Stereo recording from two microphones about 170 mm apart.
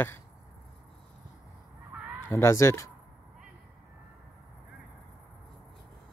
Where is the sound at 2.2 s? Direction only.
15° left (ahead or behind).